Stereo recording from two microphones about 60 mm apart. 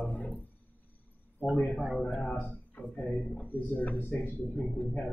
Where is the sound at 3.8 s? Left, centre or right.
Left.